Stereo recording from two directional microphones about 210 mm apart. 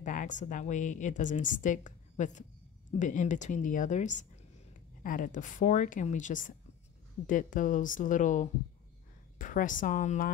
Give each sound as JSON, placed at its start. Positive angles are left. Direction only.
{"t": 0.0, "sound": "a woman's voice", "side_deg": 35}